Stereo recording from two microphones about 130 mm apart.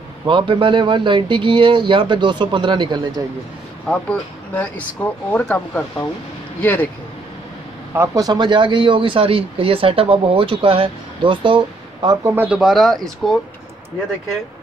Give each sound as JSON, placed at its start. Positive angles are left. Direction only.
{"t": 0.3, "sound": "speech", "side_deg": -40}
{"t": 3.9, "sound": "speech", "side_deg": 10}
{"t": 7.9, "sound": "speech", "side_deg": -25}
{"t": 12.2, "sound": "speech", "side_deg": -20}
{"t": 12.4, "sound": "speech", "side_deg": 0}